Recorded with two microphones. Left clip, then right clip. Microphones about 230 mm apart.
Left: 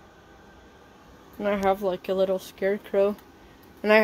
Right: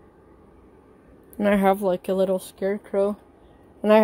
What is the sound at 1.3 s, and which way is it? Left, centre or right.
Speech, right.